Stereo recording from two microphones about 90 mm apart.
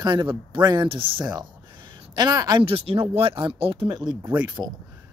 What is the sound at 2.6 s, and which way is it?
Speech, 90° right.